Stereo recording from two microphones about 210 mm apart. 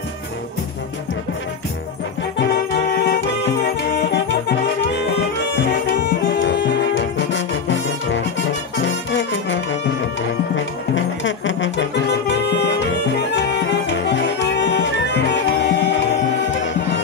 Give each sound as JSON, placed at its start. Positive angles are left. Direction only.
{"t": 2.3, "sound": "music", "side_deg": 50}